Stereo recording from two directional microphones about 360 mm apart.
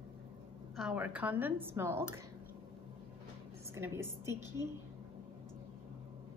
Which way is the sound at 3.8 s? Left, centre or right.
Centre.